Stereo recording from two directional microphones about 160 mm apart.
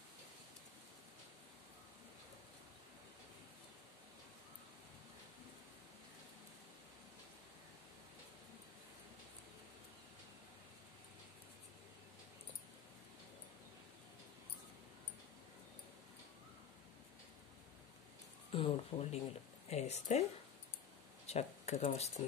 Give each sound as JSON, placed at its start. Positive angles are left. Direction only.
{"t": 18.5, "sound": "a woman's voice", "side_deg": 35}
{"t": 21.3, "sound": "speech", "side_deg": 40}